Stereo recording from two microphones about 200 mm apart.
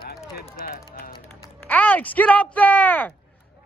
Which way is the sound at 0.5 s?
50° left (ahead or behind).